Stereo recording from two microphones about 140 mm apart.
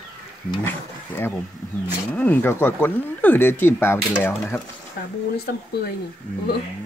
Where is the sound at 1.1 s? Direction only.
15° left (ahead or behind).